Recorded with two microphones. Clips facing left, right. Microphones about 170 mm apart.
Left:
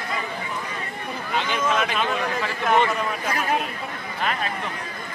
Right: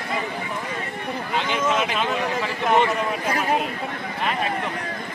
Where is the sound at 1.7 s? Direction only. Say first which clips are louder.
Left 1 dB; 20° right (ahead or behind).